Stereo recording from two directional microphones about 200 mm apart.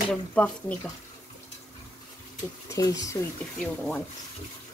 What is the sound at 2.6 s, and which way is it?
Speech, 15° left (ahead or behind).